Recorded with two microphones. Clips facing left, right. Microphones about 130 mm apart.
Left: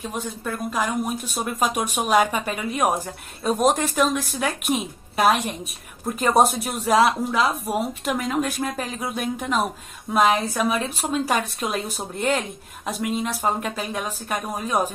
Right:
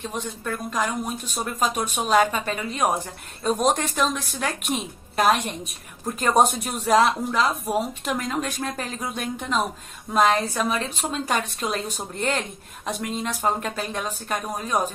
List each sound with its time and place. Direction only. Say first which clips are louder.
0.0 s a woman's voice: left 1 dB; 10° left (ahead or behind)